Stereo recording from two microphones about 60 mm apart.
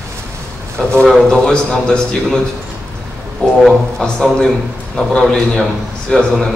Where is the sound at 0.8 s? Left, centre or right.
Centre.